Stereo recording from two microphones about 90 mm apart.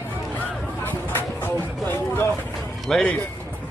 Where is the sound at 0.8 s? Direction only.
25° left (ahead or behind).